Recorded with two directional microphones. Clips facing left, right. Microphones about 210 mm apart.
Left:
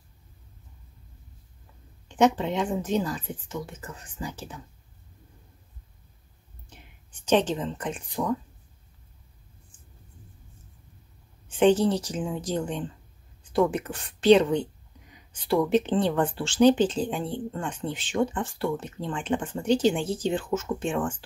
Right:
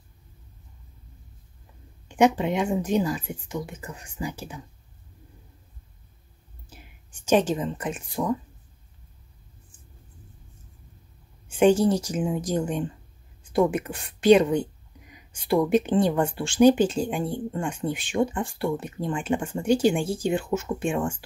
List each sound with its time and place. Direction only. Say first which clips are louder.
2.0 s speech: right 2 dB; 10° right (ahead or behind)
6.7 s speech: right 2 dB; 10° right (ahead or behind)
11.4 s speech: right 1 dB; 10° right (ahead or behind)